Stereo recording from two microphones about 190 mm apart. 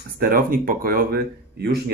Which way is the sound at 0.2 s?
50° right (ahead or behind).